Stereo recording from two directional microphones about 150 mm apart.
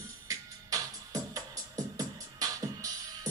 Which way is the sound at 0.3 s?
25° right (ahead or behind).